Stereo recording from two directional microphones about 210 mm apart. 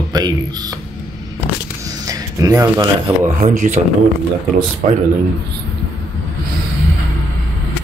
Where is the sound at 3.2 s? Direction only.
35° right (ahead or behind).